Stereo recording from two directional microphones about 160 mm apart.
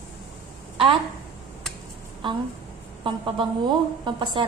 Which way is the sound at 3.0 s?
30° right (ahead or behind).